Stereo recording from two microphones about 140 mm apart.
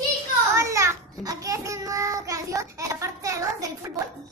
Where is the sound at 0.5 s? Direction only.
20° right (ahead or behind).